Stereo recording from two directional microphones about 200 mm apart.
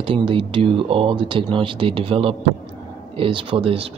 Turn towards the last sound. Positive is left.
turn(degrees=-25)  # may be behind; listen again after turning